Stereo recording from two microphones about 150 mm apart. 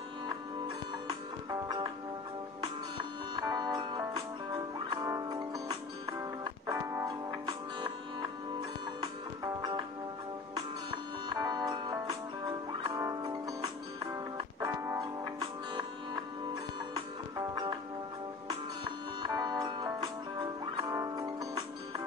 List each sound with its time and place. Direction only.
1.0 s music: 30° right (ahead or behind)
3.3 s music: 25° right (ahead or behind)
11.2 s music: 25° right (ahead or behind)
19.2 s music: 30° right (ahead or behind)